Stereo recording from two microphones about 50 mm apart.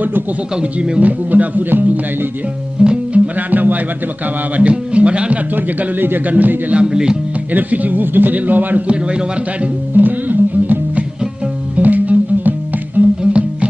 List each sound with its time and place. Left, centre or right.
0.6 s speech: right
1.3 s a man's voice: right
2.8 s music: centre
3.3 s speech: right
4.6 s speech: right
5.6 s a man's voice: right
6.8 s speech: centre
7.5 s a man's voice: right
9.9 s music: right
13.2 s music: right